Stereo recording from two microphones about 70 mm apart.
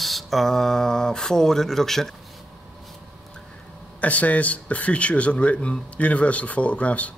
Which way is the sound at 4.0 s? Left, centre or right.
Left.